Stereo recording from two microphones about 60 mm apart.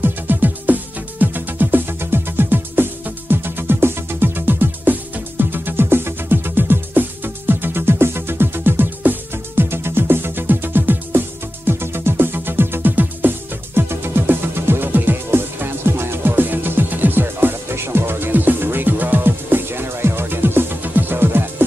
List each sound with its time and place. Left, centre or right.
0.0 s music: right